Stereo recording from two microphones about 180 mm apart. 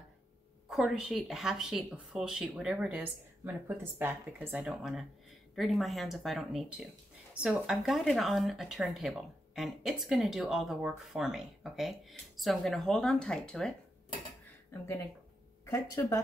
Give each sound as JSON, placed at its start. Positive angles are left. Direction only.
{"t": 0.7, "sound": "speech", "side_deg": 0}
{"t": 15.6, "sound": "speech", "side_deg": 15}